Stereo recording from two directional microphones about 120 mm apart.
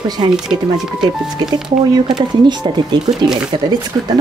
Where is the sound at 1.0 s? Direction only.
35° right (ahead or behind).